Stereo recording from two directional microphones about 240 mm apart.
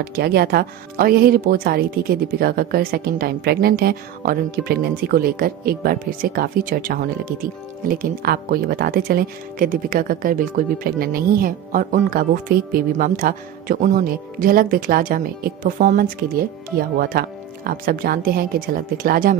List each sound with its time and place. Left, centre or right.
0.0 s speech: right